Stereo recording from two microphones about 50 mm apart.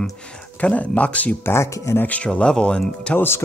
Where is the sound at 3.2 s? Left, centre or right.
Left.